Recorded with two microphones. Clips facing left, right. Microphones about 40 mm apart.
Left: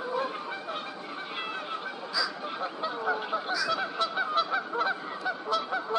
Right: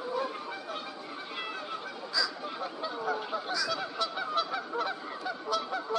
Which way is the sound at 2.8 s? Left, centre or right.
Left.